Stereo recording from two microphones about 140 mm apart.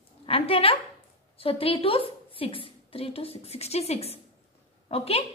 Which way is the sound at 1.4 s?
40° left (ahead or behind).